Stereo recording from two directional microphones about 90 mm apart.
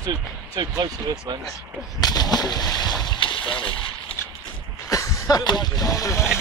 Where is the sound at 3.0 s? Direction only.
65° left (ahead or behind).